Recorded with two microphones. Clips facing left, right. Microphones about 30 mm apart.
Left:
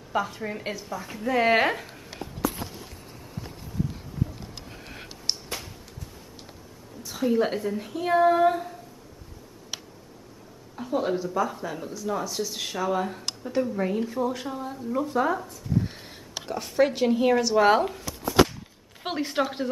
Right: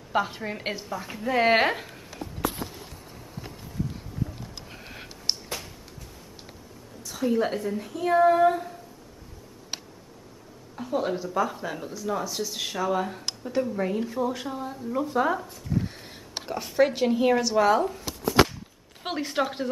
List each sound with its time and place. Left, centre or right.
0.1 s a woman's voice: right
0.8 s a woman's voice: centre
4.6 s a sound: centre
7.0 s speech: centre
10.8 s speech: centre
15.8 s a sound: centre
16.4 s speech: centre
18.0 s chopping: right
19.0 s speech: centre